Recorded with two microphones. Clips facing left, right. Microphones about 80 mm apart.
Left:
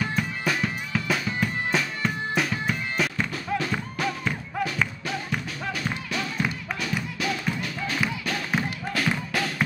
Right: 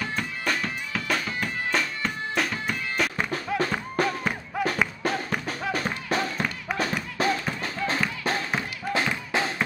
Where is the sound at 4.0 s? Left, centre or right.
Right.